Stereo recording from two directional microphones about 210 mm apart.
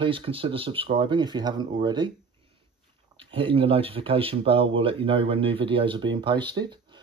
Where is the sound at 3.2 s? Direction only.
25° right (ahead or behind).